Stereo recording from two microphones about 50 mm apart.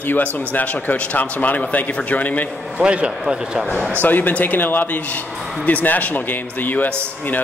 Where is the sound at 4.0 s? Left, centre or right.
Left.